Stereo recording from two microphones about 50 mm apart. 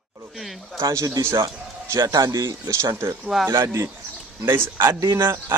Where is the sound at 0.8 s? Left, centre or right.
Right.